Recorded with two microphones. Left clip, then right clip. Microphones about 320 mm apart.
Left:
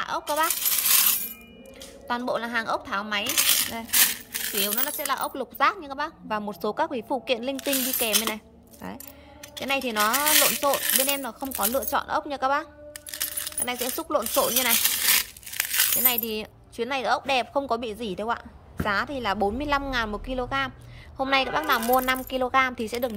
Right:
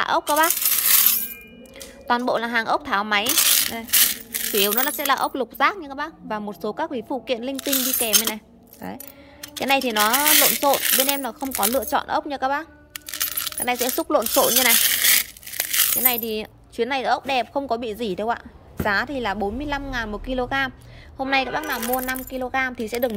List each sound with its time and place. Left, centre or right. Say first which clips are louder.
0.0 s speech: right 6 dB; centre
2.0 s speech: right 6 dB; centre